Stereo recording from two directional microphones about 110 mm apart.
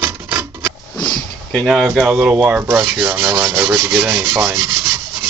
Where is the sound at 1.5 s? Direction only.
5° left (ahead or behind).